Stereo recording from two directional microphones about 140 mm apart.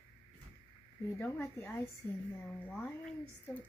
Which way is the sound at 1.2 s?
15° left (ahead or behind).